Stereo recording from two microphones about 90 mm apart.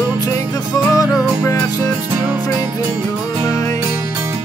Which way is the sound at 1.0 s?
40° left (ahead or behind).